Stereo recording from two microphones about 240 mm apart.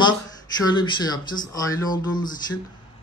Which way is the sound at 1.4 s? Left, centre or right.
Centre.